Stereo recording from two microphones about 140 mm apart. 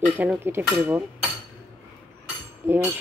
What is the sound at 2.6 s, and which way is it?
Speech, 15° right (ahead or behind).